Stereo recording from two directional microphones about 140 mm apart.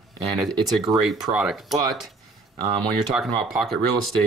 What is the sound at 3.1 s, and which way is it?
Speech, 10° right (ahead or behind).